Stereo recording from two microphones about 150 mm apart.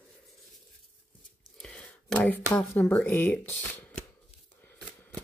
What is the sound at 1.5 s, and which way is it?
Speech, 5° left (ahead or behind).